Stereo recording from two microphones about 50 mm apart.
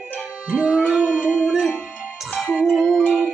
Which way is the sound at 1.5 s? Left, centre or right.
Centre.